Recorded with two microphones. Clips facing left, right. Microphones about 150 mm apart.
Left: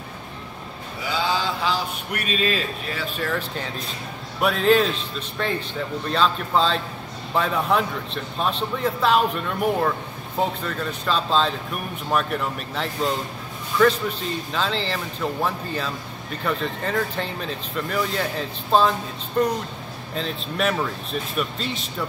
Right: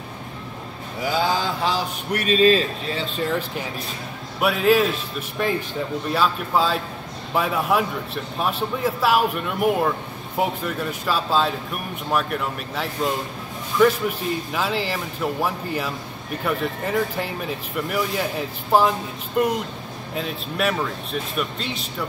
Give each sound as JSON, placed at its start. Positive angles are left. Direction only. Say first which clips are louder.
{"t": 1.0, "sound": "mantra", "louder": "right 2 dB", "side_deg": -45}
{"t": 2.1, "sound": "speech", "louder": "right 8 dB", "side_deg": -35}
{"t": 4.4, "sound": "speech", "louder": "even", "side_deg": -5}